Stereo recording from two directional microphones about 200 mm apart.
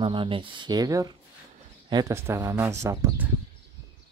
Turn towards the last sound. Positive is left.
turn(degrees=-15)  # may be behind; listen again after turning